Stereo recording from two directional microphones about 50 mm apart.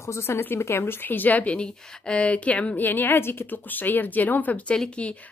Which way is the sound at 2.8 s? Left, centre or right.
Left.